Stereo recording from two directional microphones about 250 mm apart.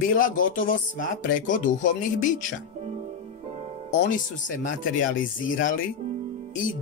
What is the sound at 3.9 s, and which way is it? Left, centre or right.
Speech, left.